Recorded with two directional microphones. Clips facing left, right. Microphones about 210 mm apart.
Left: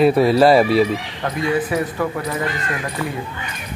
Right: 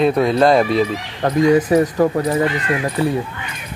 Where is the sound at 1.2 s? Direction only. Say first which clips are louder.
Right 9 dB; 40° right (ahead or behind).